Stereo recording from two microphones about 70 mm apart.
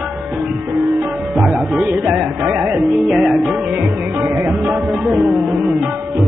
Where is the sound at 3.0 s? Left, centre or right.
Centre.